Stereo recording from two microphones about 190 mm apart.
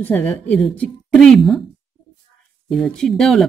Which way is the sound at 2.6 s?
Centre (ahead or behind).